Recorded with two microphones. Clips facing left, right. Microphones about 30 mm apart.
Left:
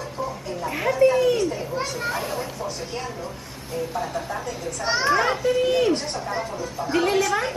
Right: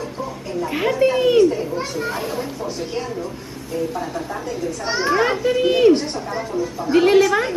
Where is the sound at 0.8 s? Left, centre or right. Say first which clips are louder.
Right 1 dB; right.